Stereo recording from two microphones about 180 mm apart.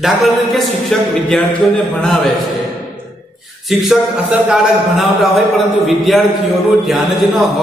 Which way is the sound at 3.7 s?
Centre (ahead or behind).